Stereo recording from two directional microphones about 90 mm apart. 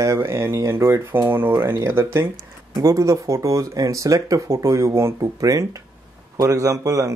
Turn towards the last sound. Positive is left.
turn(degrees=-35)  # may be behind; listen again after turning